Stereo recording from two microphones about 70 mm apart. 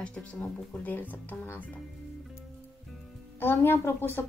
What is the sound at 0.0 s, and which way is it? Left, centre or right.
A woman's voice, centre.